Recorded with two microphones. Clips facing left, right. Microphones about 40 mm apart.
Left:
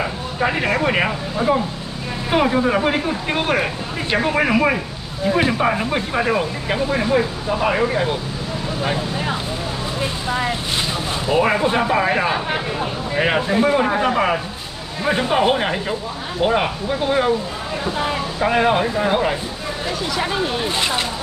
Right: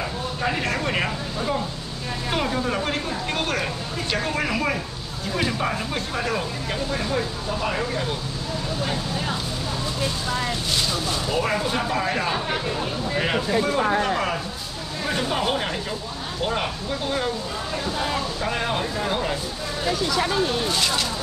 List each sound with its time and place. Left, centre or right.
0.4 s speech: left